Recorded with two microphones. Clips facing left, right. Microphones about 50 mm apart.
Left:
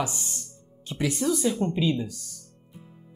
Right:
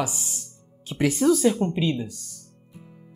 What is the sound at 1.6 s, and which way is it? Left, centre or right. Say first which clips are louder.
Speech: right 1 dB; centre.